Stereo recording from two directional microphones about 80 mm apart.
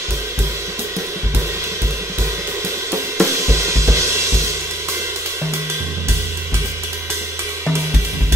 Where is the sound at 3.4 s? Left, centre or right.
Right.